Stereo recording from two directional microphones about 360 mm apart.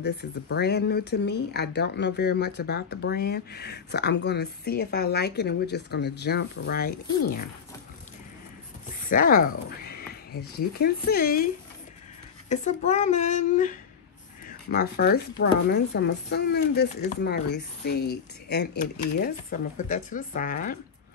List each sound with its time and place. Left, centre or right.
0.0 s speech: left
9.0 s speech: left
12.4 s speech: centre